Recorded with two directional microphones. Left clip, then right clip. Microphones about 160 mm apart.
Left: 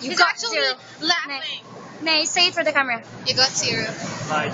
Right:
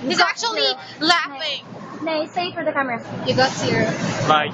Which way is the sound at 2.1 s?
20° left (ahead or behind).